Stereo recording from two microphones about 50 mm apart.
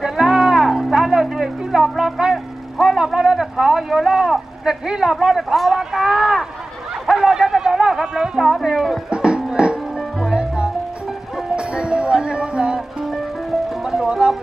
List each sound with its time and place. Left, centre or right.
0.0 s music: centre
0.9 s a sound: centre
2.3 s vehicle: centre
5.2 s a sound: centre
8.4 s speech: centre
9.1 s music: centre
13.1 s music: centre